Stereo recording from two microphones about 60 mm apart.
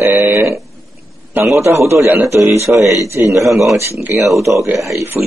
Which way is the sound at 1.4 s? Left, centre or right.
Right.